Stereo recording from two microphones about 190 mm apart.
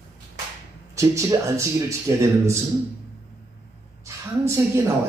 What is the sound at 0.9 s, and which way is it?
A man's voice, 15° right (ahead or behind).